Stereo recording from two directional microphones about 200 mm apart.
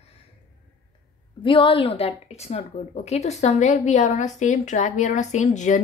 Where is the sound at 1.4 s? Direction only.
25° left (ahead or behind).